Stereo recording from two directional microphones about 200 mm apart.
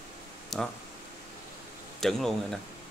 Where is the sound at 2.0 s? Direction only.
Centre (ahead or behind).